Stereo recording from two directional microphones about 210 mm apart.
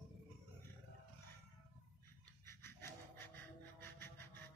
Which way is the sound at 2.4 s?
10° left (ahead or behind).